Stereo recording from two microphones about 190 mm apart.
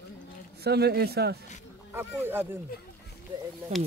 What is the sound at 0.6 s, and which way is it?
Speech, 60° right (ahead or behind).